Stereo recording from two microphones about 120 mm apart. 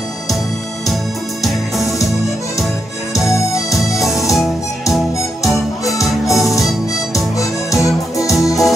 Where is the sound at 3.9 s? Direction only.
Centre (ahead or behind).